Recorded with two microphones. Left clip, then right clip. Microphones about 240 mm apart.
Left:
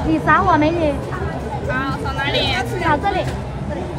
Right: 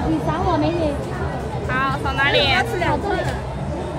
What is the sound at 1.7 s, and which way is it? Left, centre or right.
Vehicle, right.